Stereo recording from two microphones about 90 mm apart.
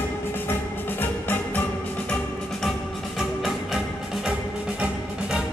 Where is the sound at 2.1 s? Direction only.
5° left (ahead or behind).